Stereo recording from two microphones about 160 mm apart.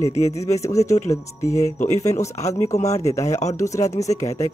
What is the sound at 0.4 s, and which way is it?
Speech, 20° left (ahead or behind).